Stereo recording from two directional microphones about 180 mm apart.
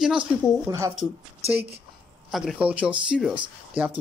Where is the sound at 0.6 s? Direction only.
15° right (ahead or behind).